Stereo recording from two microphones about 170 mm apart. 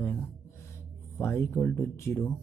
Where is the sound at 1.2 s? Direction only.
15° left (ahead or behind).